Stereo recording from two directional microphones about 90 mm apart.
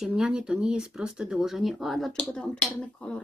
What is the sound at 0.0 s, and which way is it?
Speech, 10° right (ahead or behind).